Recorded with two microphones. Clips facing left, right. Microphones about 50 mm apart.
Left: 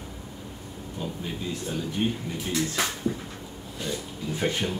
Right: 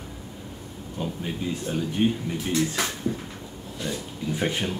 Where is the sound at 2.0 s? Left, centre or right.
Centre.